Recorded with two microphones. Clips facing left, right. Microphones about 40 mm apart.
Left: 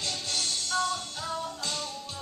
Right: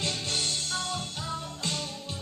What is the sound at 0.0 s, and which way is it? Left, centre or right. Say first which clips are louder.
Music: right 2 dB; right.